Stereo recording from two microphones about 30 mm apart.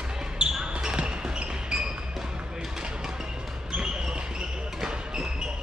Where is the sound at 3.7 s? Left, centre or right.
Right.